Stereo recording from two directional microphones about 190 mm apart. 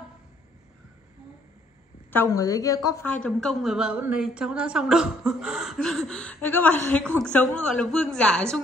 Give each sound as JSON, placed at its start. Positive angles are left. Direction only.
{"t": 2.0, "sound": "a woman's voice", "side_deg": 15}
{"t": 3.1, "sound": "a woman's voice", "side_deg": 5}